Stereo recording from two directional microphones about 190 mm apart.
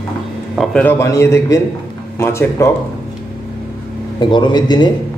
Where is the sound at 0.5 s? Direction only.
5° left (ahead or behind).